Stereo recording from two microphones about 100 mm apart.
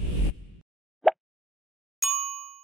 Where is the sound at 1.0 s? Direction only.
Centre (ahead or behind).